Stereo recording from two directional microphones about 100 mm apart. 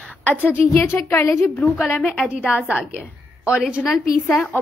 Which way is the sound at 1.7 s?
15° left (ahead or behind).